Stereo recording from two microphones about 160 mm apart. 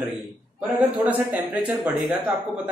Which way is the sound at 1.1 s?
10° right (ahead or behind).